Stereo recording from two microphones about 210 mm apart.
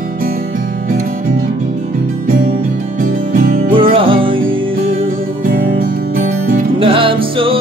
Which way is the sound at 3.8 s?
25° right (ahead or behind).